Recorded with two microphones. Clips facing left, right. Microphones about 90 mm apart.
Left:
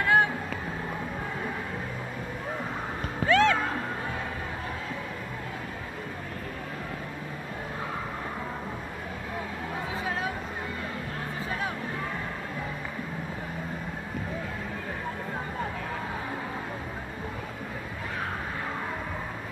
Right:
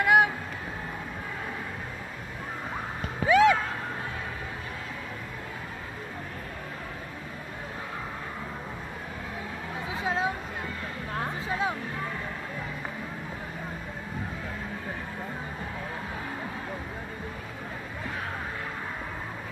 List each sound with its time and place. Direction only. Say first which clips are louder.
0.0 s music: right 2 dB; 15° right (ahead or behind)
3.3 s music: right 2 dB; 10° right (ahead or behind)
10.0 s a sound: right 5 dB; 25° right (ahead or behind)
11.4 s music: right 3 dB; 20° right (ahead or behind)